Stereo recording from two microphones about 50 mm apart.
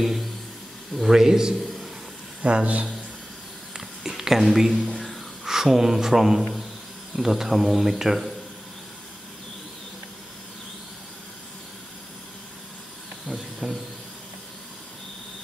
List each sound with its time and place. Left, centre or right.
0.9 s a man's voice: centre
2.4 s speech: right
3.7 s gasp: centre
5.5 s a man's voice: centre
13.3 s speech: centre